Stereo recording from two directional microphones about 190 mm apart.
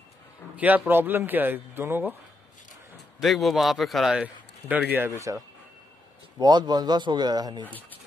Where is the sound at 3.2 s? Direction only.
Centre (ahead or behind).